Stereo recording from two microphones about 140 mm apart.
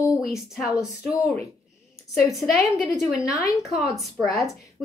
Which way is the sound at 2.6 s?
Centre (ahead or behind).